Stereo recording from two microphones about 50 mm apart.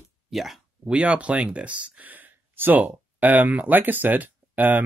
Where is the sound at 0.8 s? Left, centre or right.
Right.